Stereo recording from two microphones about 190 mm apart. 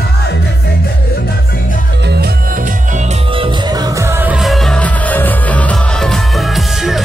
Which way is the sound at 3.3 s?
25° right (ahead or behind).